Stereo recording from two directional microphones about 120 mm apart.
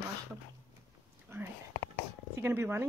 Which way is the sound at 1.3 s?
25° right (ahead or behind).